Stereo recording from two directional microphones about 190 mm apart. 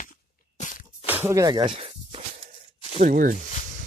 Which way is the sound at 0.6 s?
45° left (ahead or behind).